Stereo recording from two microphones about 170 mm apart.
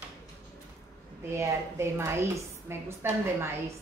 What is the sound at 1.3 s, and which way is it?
A woman's voice, 15° right (ahead or behind).